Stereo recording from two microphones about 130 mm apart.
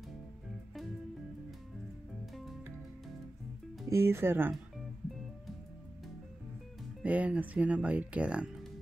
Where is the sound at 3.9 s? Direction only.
20° right (ahead or behind).